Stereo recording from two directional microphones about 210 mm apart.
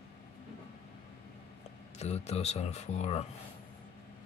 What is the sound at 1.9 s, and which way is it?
Speech, 30° left (ahead or behind).